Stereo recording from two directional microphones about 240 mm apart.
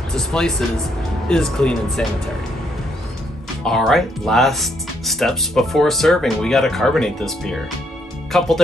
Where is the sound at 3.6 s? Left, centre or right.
Centre.